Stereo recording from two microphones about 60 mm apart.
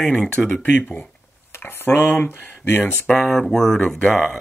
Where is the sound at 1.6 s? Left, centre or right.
Left.